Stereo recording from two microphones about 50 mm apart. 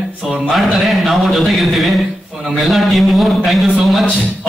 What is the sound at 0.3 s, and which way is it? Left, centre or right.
A man's voice, centre.